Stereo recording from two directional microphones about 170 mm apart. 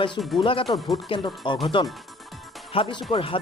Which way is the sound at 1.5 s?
30° left (ahead or behind).